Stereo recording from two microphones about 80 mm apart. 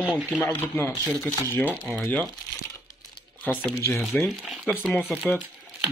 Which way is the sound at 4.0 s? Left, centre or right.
Centre.